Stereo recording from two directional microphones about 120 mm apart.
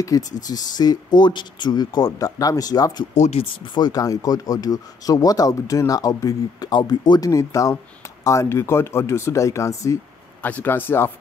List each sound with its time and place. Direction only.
0.4 s speech: 30° left (ahead or behind)
3.2 s speech: 60° left (ahead or behind)
3.7 s speech: 35° left (ahead or behind); by 11.1 s 20° left (ahead or behind)